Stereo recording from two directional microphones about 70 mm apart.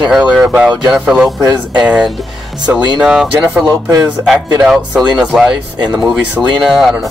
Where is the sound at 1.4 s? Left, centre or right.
Right.